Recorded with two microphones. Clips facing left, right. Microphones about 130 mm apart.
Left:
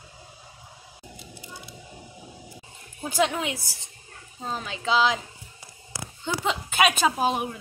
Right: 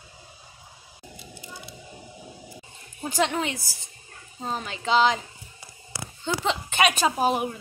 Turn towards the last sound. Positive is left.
turn(degrees=0)  # may be behind; listen again after turning